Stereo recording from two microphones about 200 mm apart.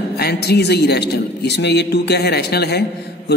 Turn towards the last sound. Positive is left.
turn(degrees=55)  # may be behind; listen again after turning